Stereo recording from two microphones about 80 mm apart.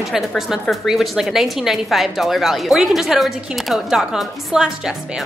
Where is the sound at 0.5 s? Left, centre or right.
Centre.